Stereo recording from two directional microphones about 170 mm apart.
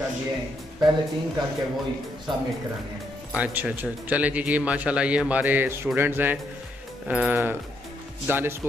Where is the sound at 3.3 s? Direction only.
10° right (ahead or behind).